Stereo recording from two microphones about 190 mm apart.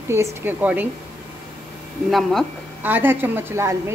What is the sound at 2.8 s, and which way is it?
A woman's voice, 10° right (ahead or behind).